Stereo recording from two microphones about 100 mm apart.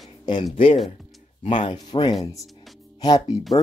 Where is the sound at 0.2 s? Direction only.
50° left (ahead or behind).